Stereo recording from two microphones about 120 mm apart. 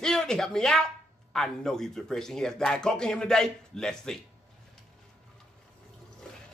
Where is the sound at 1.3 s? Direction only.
5° left (ahead or behind).